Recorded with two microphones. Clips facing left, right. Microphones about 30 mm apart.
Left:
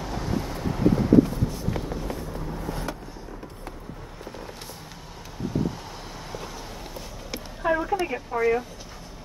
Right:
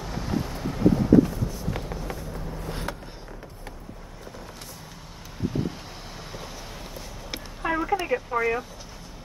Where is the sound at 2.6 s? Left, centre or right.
Right.